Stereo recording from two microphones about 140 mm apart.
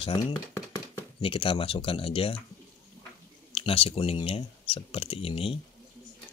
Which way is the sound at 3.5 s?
40° left (ahead or behind).